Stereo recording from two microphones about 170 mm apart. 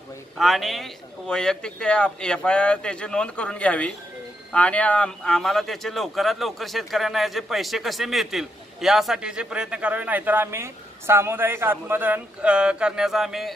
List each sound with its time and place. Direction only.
0.4 s speech: centre (ahead or behind)